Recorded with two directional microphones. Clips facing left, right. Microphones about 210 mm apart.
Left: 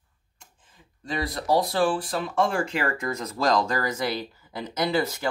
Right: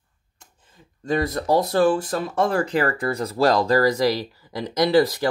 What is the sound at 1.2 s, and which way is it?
Speech, 45° right (ahead or behind).